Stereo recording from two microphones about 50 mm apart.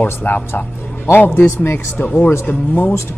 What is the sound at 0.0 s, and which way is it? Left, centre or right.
A man's voice, left.